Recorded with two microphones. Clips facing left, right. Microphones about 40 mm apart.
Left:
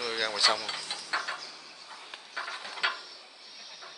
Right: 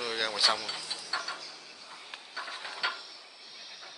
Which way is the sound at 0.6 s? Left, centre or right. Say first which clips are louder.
Left 2 dB; left.